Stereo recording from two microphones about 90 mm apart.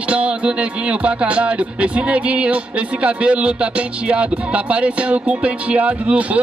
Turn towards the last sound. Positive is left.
turn(degrees=-15)  # may be behind; listen again after turning